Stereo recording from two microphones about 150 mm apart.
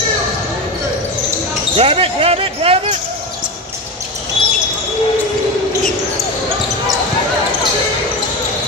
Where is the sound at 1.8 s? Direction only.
40° right (ahead or behind).